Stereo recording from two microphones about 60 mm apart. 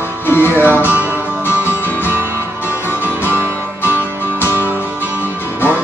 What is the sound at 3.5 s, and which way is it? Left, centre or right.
Music, left.